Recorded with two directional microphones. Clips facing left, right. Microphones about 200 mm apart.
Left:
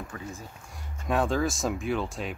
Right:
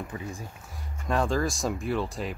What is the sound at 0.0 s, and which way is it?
Speech, 15° right (ahead or behind).